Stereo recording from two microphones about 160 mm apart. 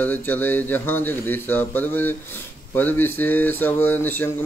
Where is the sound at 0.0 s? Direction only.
10° left (ahead or behind).